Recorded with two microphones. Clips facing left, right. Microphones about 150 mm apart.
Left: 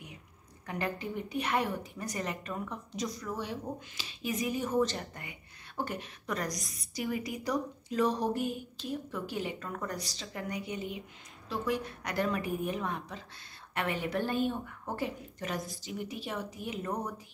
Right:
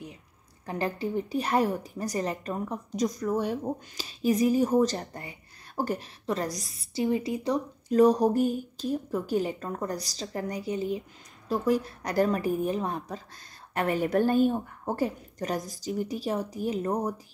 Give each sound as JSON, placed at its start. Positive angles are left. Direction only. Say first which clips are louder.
{"t": 0.7, "sound": "a woman's voice", "louder": "right 5 dB", "side_deg": -35}
{"t": 7.9, "sound": "a woman's voice", "louder": "right 9 dB", "side_deg": -45}